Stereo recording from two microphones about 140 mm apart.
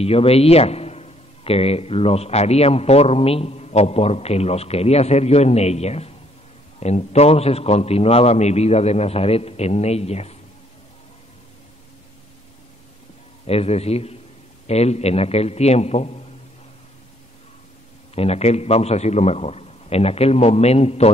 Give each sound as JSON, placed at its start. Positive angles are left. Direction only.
{"t": 0.0, "sound": "a man's voice", "side_deg": 45}
{"t": 13.5, "sound": "a man's voice", "side_deg": 45}
{"t": 18.1, "sound": "a man's voice", "side_deg": 45}